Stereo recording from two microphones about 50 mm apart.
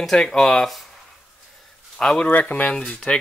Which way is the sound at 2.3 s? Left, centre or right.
Left.